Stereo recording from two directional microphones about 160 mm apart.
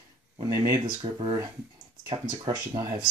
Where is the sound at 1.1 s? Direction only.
35° right (ahead or behind).